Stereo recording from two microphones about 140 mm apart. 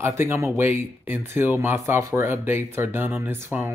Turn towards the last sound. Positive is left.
turn(degrees=-15)  # may be behind; listen again after turning